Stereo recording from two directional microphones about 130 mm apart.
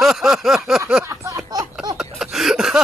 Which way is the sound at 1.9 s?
5° right (ahead or behind).